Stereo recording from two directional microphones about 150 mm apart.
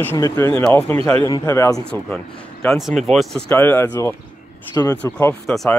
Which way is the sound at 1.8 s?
5° left (ahead or behind).